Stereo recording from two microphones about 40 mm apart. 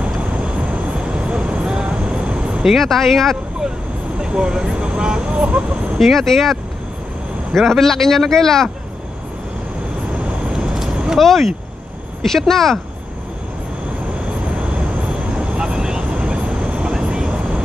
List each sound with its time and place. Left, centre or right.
0.0 s vehicle: right
2.7 s speech: centre
4.2 s speech: centre
5.9 s speech: centre
10.5 s vehicle: centre
11.1 s speech: centre
15.1 s vehicle: right